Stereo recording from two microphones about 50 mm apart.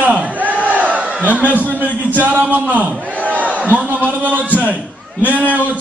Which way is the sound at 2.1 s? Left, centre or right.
Right.